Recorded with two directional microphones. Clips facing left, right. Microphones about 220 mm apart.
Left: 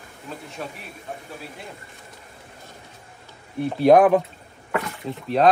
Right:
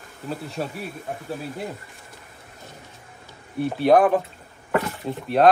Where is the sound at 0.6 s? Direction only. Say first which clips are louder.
Right 4 dB; 35° right (ahead or behind).